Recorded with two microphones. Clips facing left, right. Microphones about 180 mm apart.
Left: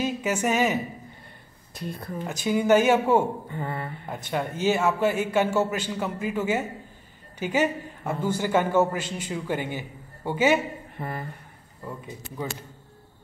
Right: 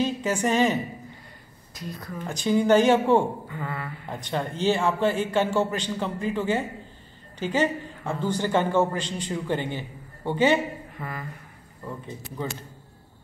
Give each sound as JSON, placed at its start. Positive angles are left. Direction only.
{"t": 0.0, "sound": "a man's voice", "side_deg": 10}
{"t": 1.7, "sound": "a woman's voice", "side_deg": 60}
{"t": 2.0, "sound": "speech", "side_deg": 30}
{"t": 2.2, "sound": "a man's voice", "side_deg": 5}
{"t": 3.4, "sound": "mantra", "side_deg": 30}
{"t": 4.1, "sound": "a man's voice", "side_deg": 10}
{"t": 11.0, "sound": "mantra", "side_deg": 35}
{"t": 11.8, "sound": "a man's voice", "side_deg": 10}